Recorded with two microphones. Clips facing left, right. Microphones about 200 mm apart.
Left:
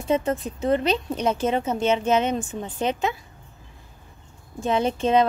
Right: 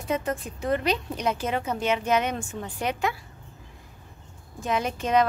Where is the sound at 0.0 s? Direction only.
25° left (ahead or behind).